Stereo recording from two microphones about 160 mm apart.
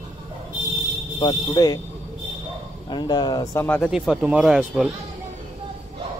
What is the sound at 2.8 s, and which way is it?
Speech, 25° left (ahead or behind).